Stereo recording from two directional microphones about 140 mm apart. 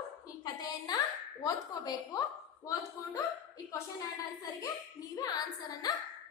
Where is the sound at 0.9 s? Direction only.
30° left (ahead or behind).